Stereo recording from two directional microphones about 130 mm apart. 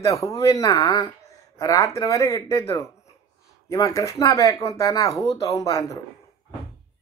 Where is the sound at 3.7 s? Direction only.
25° left (ahead or behind).